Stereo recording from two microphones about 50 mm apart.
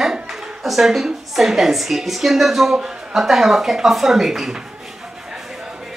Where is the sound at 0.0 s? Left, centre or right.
Centre.